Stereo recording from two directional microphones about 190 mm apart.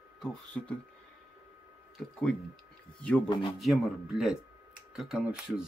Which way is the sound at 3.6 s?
Centre (ahead or behind).